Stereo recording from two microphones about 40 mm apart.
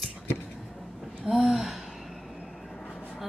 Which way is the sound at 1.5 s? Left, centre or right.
Centre.